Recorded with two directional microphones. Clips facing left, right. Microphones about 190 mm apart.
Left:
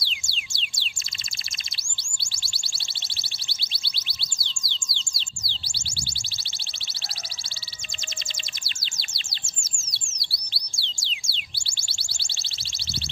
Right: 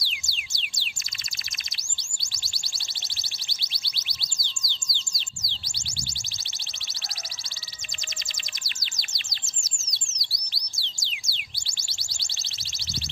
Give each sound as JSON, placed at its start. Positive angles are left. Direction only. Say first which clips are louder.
{"t": 0.0, "sound": "music", "louder": "left 2 dB", "side_deg": 30}
{"t": 2.1, "sound": "a sound", "louder": "left 1 dB", "side_deg": 30}
{"t": 3.2, "sound": "music", "louder": "left 1 dB", "side_deg": 30}
{"t": 8.6, "sound": "chirp", "louder": "left 1 dB", "side_deg": 30}
{"t": 9.8, "sound": "chirp", "louder": "even", "side_deg": 10}
{"t": 10.2, "sound": "chirp", "louder": "left 2 dB", "side_deg": 30}